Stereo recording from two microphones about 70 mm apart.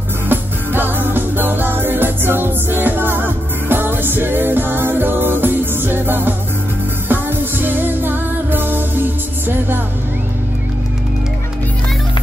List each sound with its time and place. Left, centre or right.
0.3 s music: right